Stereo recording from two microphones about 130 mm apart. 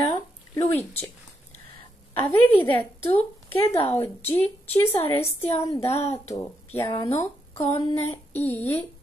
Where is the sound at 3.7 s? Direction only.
50° left (ahead or behind).